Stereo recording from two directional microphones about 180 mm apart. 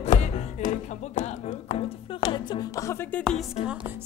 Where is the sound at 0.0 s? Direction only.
40° left (ahead or behind).